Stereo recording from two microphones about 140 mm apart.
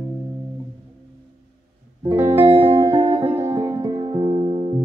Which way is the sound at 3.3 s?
15° right (ahead or behind).